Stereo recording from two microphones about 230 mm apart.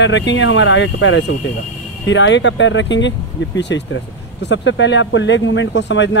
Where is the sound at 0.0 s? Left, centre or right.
Left.